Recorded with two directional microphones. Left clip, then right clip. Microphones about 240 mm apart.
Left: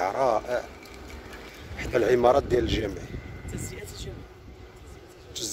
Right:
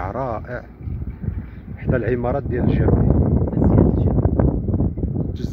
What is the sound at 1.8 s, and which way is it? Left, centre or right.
Speech, centre.